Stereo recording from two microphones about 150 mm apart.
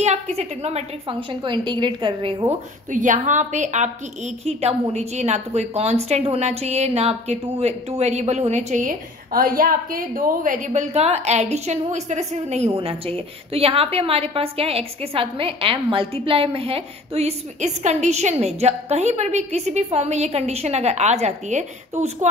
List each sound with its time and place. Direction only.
0.0 s a woman's voice: 45° right (ahead or behind); by 2.5 s 30° right (ahead or behind)
2.9 s a woman's voice: 55° right (ahead or behind)